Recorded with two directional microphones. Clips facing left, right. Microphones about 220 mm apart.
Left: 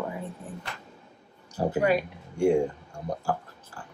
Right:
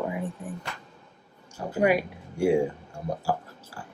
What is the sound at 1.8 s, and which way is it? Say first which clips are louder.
Speech: right 6 dB; 10° right (ahead or behind).